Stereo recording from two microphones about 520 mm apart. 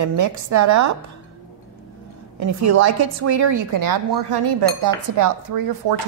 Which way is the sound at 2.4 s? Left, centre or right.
Right.